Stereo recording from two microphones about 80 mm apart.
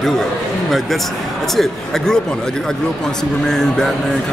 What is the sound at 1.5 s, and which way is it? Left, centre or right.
Speech, centre.